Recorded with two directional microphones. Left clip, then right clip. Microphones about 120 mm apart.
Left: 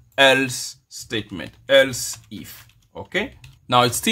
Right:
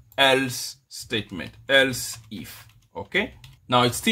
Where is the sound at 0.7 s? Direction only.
20° left (ahead or behind).